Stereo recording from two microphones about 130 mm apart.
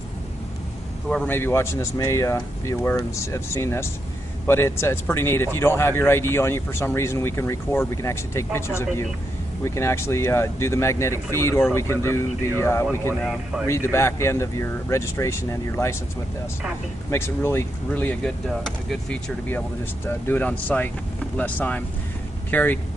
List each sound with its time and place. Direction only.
1.0 s a man's voice: 5° left (ahead or behind)
1.3 s speech: 20° left (ahead or behind)
17.1 s speech: 20° left (ahead or behind)